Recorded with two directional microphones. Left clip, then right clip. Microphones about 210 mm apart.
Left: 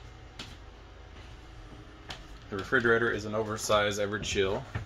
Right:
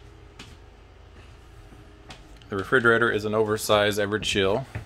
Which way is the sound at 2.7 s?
40° right (ahead or behind).